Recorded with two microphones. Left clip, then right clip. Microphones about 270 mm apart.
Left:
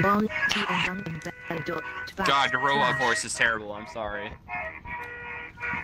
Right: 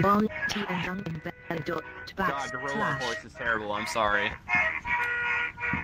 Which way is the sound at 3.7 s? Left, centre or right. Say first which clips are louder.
Right 7 dB; right.